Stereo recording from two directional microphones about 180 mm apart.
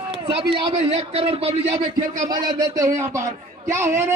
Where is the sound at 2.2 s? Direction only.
20° right (ahead or behind).